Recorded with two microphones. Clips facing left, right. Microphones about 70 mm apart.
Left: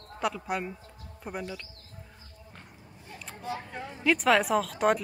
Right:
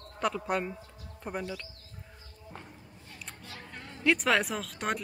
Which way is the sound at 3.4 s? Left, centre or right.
Centre.